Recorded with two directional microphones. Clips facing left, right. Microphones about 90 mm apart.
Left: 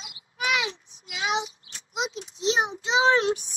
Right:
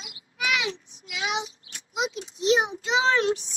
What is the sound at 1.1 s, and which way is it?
A child's voice, 35° left (ahead or behind).